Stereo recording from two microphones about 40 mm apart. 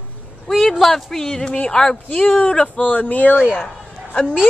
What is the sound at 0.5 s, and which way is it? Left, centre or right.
Speech, centre.